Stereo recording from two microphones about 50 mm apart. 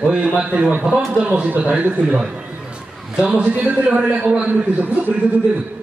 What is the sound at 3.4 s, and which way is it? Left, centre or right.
Speech, right.